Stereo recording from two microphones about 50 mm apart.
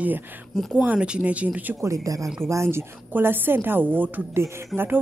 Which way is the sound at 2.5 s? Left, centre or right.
Right.